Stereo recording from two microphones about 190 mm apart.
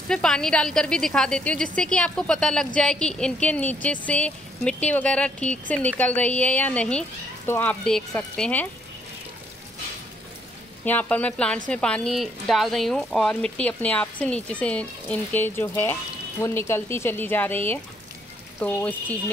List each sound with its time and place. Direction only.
0.1 s a woman's voice: 5° left (ahead or behind)
10.9 s a woman's voice: 10° left (ahead or behind)